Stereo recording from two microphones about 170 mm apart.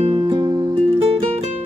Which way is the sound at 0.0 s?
35° right (ahead or behind).